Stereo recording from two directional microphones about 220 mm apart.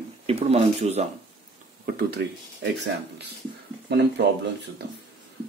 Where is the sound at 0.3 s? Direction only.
30° right (ahead or behind).